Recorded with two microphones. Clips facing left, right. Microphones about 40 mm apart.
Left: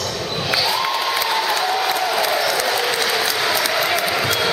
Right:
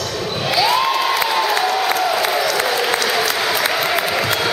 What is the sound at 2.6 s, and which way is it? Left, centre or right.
Applause, centre.